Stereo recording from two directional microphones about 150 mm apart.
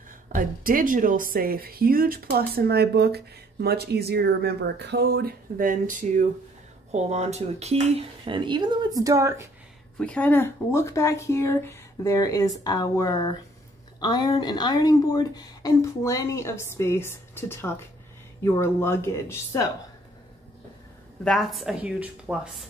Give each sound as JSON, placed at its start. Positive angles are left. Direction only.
{"t": 0.3, "sound": "speech", "side_deg": -65}
{"t": 6.9, "sound": "speech", "side_deg": -50}
{"t": 9.9, "sound": "a woman's voice", "side_deg": 10}
{"t": 21.2, "sound": "speech", "side_deg": 0}